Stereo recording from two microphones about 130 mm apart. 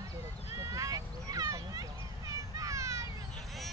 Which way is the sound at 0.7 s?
25° right (ahead or behind).